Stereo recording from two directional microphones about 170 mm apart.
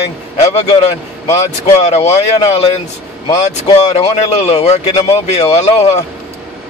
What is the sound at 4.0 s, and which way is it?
Speech, 40° left (ahead or behind).